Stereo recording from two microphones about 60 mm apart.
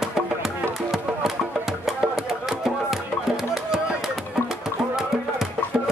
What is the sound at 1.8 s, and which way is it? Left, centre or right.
Music, centre.